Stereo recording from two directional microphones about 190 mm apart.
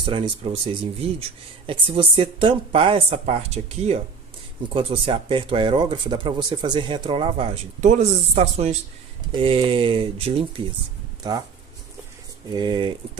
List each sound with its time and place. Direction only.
0.0 s speech: 25° right (ahead or behind)
1.7 s speech: 30° right (ahead or behind)
12.4 s speech: 25° right (ahead or behind)